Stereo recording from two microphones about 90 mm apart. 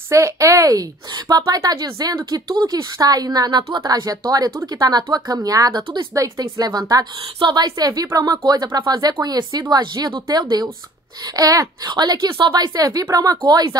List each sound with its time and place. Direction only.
0.1 s a woman's voice: 35° right (ahead or behind)
4.5 s speech: 30° right (ahead or behind)
4.8 s speech: 45° right (ahead or behind)
7.3 s a woman's voice: 55° right (ahead or behind)